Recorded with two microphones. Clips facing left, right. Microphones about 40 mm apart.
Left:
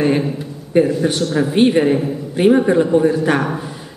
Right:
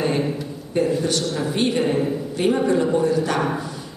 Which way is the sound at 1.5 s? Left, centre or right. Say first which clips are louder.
Left 7 dB; left.